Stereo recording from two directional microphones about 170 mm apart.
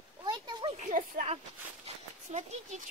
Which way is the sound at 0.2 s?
25° right (ahead or behind).